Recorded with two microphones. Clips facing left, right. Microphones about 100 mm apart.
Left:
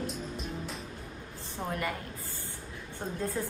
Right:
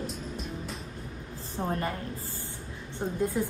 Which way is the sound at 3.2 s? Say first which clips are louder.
Right 5 dB; 15° right (ahead or behind).